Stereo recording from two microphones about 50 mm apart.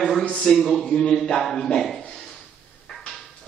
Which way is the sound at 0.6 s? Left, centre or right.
Centre.